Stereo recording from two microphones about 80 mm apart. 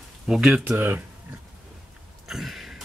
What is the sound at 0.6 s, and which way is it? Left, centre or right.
Speech, right.